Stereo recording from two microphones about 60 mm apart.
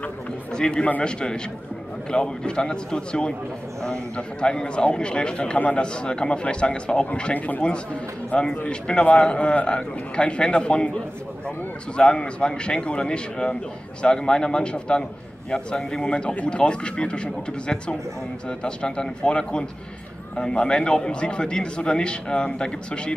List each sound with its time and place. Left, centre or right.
0.5 s a man's voice: centre
7.3 s speech: left
8.4 s a man's voice: centre